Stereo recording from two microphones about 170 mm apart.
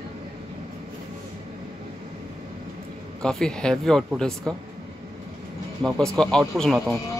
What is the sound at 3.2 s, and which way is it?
Speech, 5° left (ahead or behind).